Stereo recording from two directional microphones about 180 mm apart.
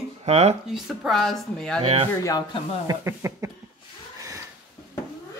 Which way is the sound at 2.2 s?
20° left (ahead or behind).